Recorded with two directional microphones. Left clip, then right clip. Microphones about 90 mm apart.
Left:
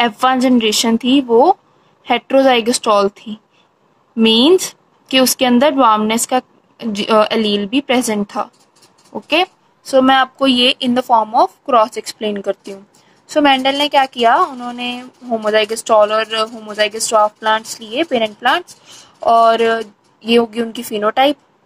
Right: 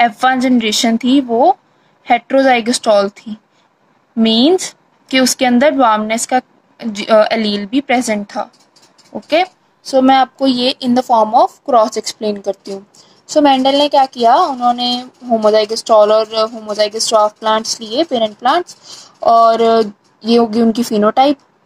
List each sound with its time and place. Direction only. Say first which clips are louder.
0.0 s a woman's voice: right 2 dB; 15° right (ahead or behind)
4.6 s a woman's voice: left 2 dB; 15° right (ahead or behind)
9.8 s a woman's voice: right 1 dB; 20° right (ahead or behind)